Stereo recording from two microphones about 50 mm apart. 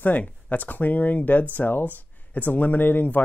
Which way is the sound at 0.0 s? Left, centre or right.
Left.